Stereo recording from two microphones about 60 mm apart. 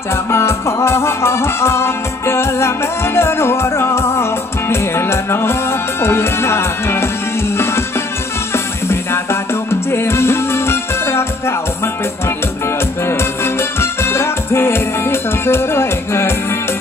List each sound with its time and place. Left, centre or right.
0.1 s music: left
8.8 s music: left
13.0 s music: left